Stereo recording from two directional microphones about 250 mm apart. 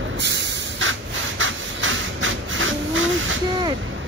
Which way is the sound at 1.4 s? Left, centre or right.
Right.